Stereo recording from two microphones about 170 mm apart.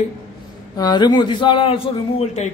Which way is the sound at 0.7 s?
25° left (ahead or behind).